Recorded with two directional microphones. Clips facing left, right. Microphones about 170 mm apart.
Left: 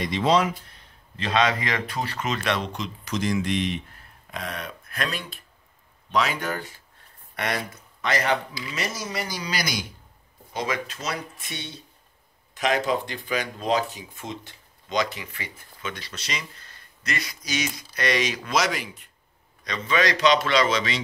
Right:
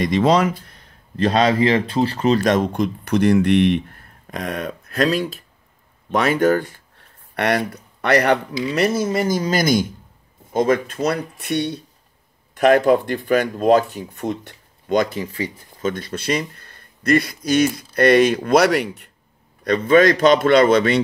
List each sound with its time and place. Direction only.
0.0 s speech: 45° right (ahead or behind)
4.3 s speech: 45° right (ahead or behind)
6.1 s speech: 50° right (ahead or behind)
7.3 s speech: 65° right (ahead or behind)
15.3 s speech: 35° right (ahead or behind)
15.9 s speech: 50° right (ahead or behind)